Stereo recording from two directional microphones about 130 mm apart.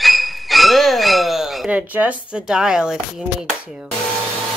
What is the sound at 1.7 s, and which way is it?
Speech, 10° right (ahead or behind).